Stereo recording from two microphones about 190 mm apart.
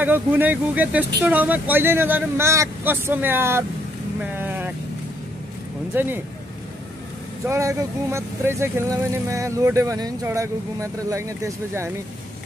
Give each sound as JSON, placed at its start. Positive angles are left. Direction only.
{"t": 0.0, "sound": "speech", "side_deg": -10}
{"t": 4.2, "sound": "boat", "side_deg": -10}
{"t": 5.9, "sound": "speech", "side_deg": -10}
{"t": 7.4, "sound": "speech", "side_deg": -15}